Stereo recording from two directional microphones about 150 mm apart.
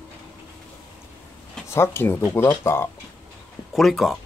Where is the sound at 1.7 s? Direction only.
15° left (ahead or behind).